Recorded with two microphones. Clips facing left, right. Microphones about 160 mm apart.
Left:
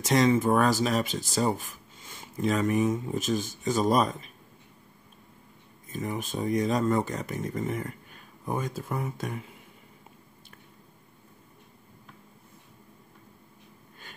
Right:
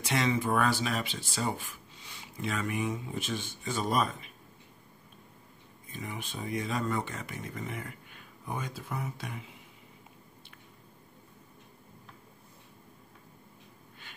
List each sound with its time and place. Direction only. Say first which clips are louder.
0.0 s speech: left 7 dB; 40° left (ahead or behind)
5.9 s speech: left 8 dB; 45° left (ahead or behind)